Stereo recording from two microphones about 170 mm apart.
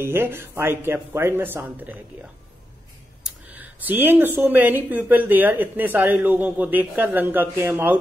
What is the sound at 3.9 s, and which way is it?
Speech, 10° right (ahead or behind).